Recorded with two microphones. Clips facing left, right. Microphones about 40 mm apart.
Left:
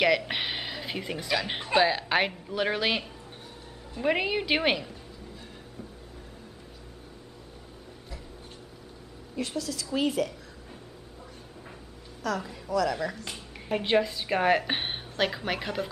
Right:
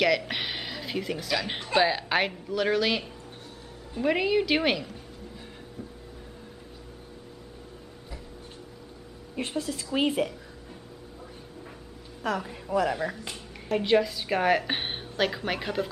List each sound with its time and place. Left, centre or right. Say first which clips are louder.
0.3 s speech: left 1 dB; centre
2.5 s a woman's voice: right 3 dB; centre
4.0 s a woman's voice: right 2 dB; centre
9.3 s speech: right 1 dB; right
12.2 s a woman's voice: right 1 dB; right
12.9 s speech: right 1 dB; centre
13.7 s a woman's voice: right 2 dB; centre